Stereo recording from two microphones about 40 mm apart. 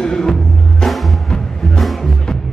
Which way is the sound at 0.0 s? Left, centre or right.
Centre.